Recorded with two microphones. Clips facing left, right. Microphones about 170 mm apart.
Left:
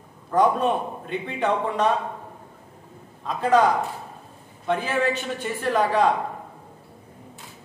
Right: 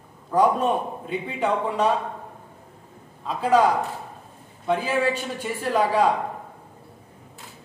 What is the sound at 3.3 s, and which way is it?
Speech, 5° right (ahead or behind).